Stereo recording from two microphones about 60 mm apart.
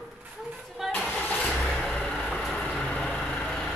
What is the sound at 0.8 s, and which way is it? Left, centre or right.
Vehicle, centre.